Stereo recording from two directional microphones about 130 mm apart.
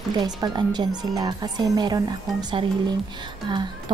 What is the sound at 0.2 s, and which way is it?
Speech, 30° right (ahead or behind).